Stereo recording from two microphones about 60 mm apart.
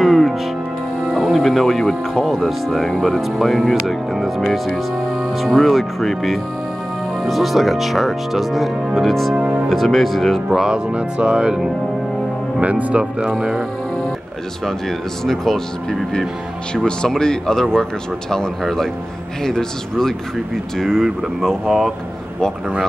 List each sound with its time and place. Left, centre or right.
0.0 s music: centre
1.1 s speech: centre
9.3 s speech: right
9.7 s speech: centre
12.5 s speech: right
15.2 s speech: centre